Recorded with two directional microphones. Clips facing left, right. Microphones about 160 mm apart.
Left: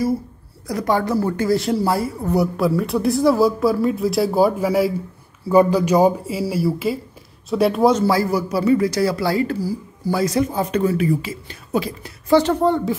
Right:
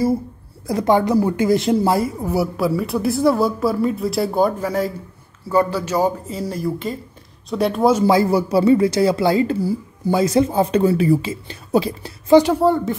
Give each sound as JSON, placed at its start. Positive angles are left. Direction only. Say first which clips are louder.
{"t": 0.7, "sound": "speech", "louder": "right 3 dB", "side_deg": -25}
{"t": 2.2, "sound": "speech", "louder": "left 1 dB", "side_deg": -5}
{"t": 7.9, "sound": "speech", "louder": "right 3 dB", "side_deg": -20}
{"t": 12.3, "sound": "speech", "louder": "right 3 dB", "side_deg": -15}